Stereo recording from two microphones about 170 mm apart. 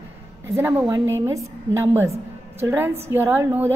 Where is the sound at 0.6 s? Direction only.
10° right (ahead or behind).